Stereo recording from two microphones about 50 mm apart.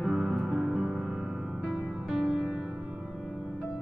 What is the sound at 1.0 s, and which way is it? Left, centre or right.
Music, centre.